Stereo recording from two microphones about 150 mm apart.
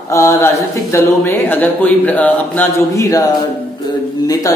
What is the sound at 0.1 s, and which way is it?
A man's voice, 20° left (ahead or behind).